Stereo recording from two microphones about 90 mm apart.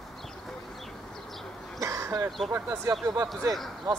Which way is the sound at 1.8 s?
30° right (ahead or behind).